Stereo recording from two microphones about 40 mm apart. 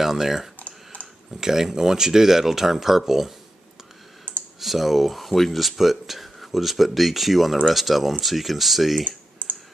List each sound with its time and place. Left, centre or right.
0.0 s speech: centre
0.6 s typing: left
1.4 s speech: centre
4.6 s speech: centre
9.4 s a sound: left